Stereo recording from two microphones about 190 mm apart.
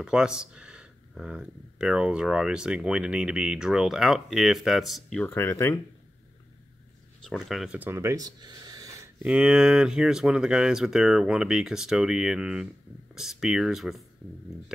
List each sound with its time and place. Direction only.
0.0 s speech: 5° right (ahead or behind); by 5.8 s 15° left (ahead or behind)
7.2 s speech: centre (ahead or behind); by 9.1 s 20° right (ahead or behind)
9.2 s speech: 5° right (ahead or behind)